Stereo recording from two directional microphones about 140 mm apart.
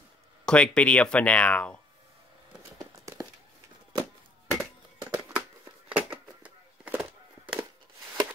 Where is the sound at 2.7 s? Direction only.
25° right (ahead or behind).